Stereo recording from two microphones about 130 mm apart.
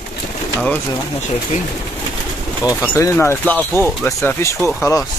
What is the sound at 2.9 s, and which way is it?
Speech, 20° left (ahead or behind).